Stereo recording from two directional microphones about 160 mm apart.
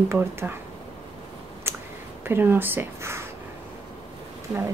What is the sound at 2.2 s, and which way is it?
Speech, 15° right (ahead or behind).